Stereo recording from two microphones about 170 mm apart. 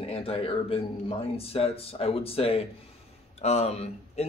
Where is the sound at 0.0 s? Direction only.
35° left (ahead or behind).